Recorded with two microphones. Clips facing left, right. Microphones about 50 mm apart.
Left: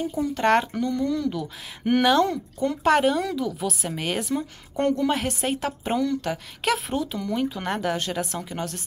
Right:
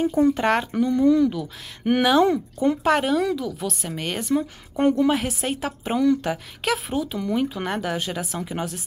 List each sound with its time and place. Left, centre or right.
0.4 s speech: centre
0.7 s speech: centre
1.3 s speech: centre
2.2 s speech: right
2.8 s speech: centre
4.7 s speech: centre
5.1 s speech: centre
6.0 s speech: centre
6.6 s speech: centre